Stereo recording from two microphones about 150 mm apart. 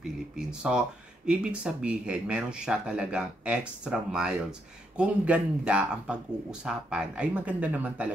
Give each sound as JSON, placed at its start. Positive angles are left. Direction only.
{"t": 0.4, "sound": "speech", "side_deg": -5}